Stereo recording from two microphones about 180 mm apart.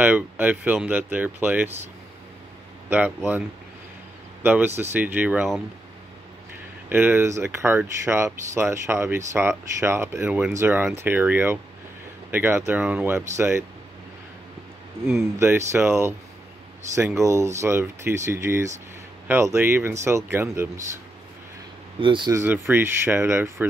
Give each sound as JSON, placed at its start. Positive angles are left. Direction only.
{"t": 0.0, "sound": "speech", "side_deg": -10}
{"t": 4.4, "sound": "speech", "side_deg": -10}
{"t": 6.9, "sound": "speech", "side_deg": -10}
{"t": 15.3, "sound": "speech", "side_deg": -15}
{"t": 22.0, "sound": "speech", "side_deg": -25}
{"t": 22.4, "sound": "speech", "side_deg": -10}